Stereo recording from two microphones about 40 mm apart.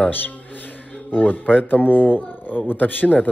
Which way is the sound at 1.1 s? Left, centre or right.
Left.